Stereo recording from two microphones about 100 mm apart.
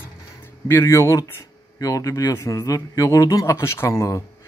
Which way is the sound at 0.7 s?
25° left (ahead or behind).